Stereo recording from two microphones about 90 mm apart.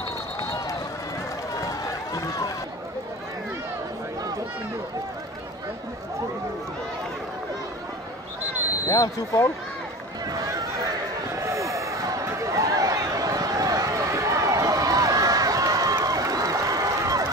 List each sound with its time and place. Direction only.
0.4 s run: 40° left (ahead or behind)
2.1 s chatter: 40° left (ahead or behind)
8.8 s speech: 35° left (ahead or behind)
10.3 s a sound: 40° right (ahead or behind)